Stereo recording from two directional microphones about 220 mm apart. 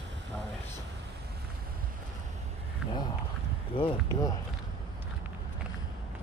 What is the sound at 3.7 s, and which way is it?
Speech, 25° left (ahead or behind).